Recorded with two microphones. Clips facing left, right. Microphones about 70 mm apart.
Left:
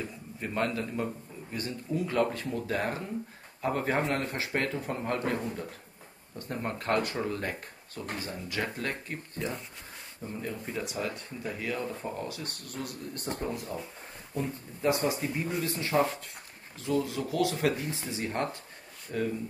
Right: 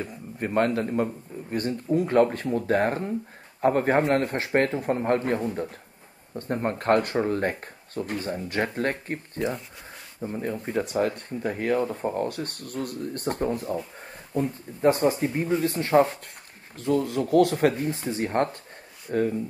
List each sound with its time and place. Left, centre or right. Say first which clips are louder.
0.0 s speech: right 6 dB; right
10.7 s speech: right 10 dB; right